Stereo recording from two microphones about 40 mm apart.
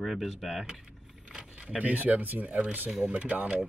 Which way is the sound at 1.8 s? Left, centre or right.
Right.